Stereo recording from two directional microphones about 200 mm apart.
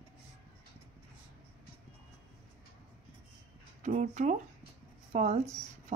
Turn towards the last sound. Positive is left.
turn(degrees=-35)  # may be behind; listen again after turning